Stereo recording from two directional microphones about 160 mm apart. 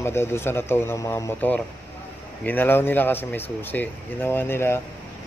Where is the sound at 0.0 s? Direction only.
15° left (ahead or behind).